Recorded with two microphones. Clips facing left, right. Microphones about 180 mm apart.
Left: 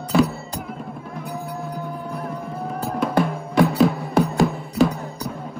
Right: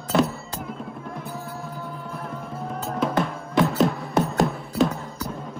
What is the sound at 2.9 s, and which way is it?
Drum, centre (ahead or behind).